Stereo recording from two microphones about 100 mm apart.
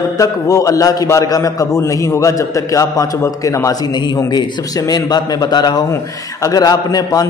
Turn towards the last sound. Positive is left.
turn(degrees=40)  # may be behind; listen again after turning